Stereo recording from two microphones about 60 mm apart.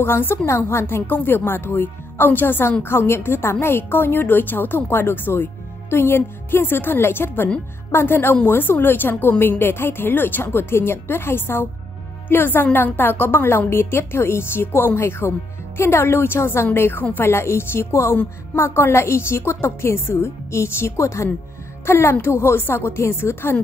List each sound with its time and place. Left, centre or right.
0.0 s a woman's voice: left
21.8 s a woman's voice: left